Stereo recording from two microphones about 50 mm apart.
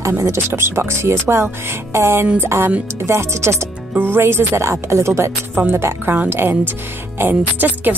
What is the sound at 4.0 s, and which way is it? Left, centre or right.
Speech, right.